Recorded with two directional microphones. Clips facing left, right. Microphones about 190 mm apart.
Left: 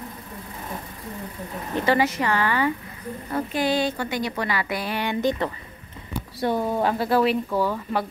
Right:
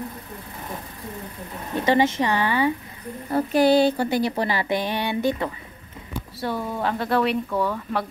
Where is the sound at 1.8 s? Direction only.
25° right (ahead or behind).